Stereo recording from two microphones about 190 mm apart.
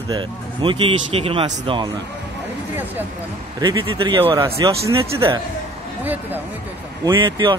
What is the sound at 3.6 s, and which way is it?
A man's voice, 25° right (ahead or behind).